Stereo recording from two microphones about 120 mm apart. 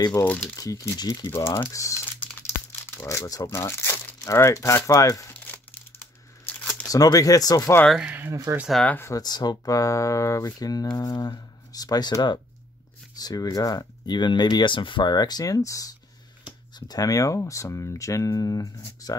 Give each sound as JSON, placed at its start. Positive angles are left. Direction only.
{"t": 0.2, "sound": "speech", "side_deg": 25}
{"t": 1.3, "sound": "speech", "side_deg": 20}
{"t": 3.0, "sound": "speech", "side_deg": 25}
{"t": 5.3, "sound": "crumpling", "side_deg": 15}
{"t": 6.9, "sound": "speech", "side_deg": 30}
{"t": 8.0, "sound": "speech", "side_deg": -15}
{"t": 8.3, "sound": "speech", "side_deg": -25}
{"t": 8.6, "sound": "speech", "side_deg": 5}
{"t": 8.9, "sound": "speech", "side_deg": 20}
{"t": 9.2, "sound": "speech", "side_deg": 35}